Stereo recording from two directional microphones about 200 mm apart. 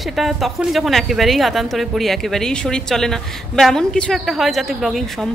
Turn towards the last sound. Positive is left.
turn(degrees=0)  # may be behind; listen again after turning